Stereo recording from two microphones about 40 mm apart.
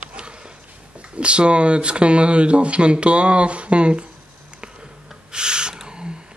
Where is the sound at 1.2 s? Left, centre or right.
Right.